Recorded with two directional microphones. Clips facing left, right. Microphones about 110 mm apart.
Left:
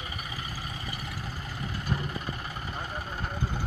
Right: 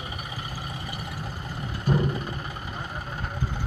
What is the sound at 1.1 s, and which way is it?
Vehicle, 20° right (ahead or behind).